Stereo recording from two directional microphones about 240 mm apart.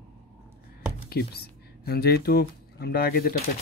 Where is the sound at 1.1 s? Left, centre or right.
Left.